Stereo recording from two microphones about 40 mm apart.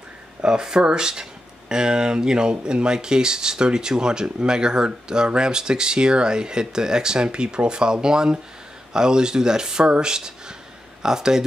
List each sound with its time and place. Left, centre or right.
0.4 s speech: centre